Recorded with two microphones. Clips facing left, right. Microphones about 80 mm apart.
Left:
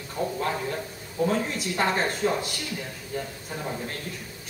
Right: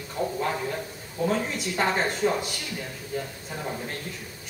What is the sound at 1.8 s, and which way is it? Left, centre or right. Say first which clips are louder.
Speech: even; centre.